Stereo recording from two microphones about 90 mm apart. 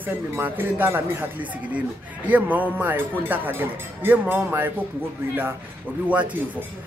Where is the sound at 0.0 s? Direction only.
20° right (ahead or behind).